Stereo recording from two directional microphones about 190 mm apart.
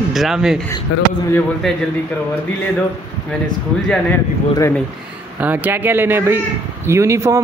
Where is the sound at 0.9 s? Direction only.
90° left.